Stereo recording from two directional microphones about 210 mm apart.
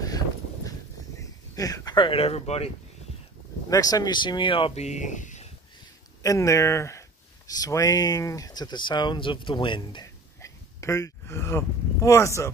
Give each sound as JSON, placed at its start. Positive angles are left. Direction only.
{"t": 0.7, "sound": "a sound", "side_deg": 15}
{"t": 3.7, "sound": "speech", "side_deg": 20}
{"t": 6.2, "sound": "speech", "side_deg": 15}